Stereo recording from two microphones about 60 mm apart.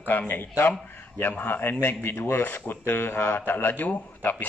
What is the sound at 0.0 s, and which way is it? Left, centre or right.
Speech, left.